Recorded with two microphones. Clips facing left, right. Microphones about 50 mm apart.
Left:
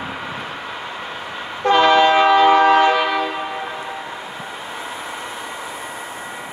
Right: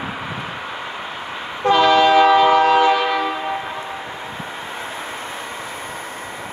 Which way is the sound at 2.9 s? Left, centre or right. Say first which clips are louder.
Even; centre.